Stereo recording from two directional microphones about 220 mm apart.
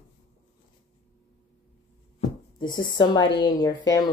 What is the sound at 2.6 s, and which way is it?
A woman's voice, 20° left (ahead or behind).